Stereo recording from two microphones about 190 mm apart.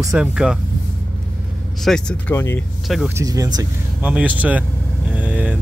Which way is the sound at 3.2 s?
20° right (ahead or behind).